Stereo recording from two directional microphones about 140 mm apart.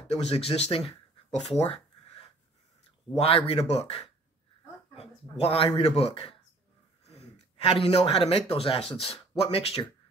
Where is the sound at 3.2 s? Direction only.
45° left (ahead or behind).